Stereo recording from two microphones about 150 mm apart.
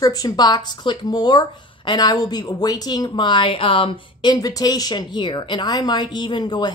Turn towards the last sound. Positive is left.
turn(degrees=30)  # may be behind; listen again after turning